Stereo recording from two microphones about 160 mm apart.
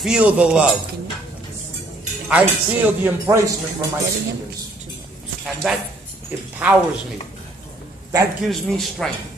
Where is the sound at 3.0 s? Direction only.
15° right (ahead or behind).